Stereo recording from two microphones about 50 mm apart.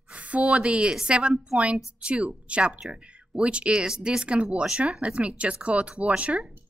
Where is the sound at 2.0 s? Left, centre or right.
Right.